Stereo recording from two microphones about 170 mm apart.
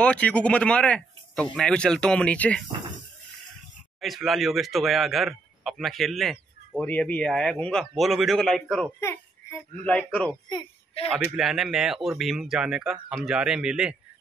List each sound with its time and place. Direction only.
0.0 s speech: 5° left (ahead or behind)
4.0 s speech: centre (ahead or behind)
9.0 s a child's voice: 15° left (ahead or behind)
11.0 s a man's voice: 35° left (ahead or behind)
11.3 s speech: centre (ahead or behind)